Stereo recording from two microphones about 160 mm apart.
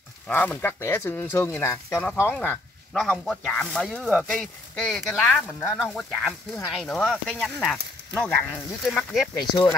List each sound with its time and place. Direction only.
0.3 s speech: 10° left (ahead or behind)
5.7 s speech: centre (ahead or behind)